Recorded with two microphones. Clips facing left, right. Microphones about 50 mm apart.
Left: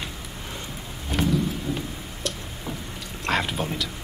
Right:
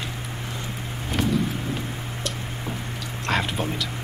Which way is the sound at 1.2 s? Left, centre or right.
Centre.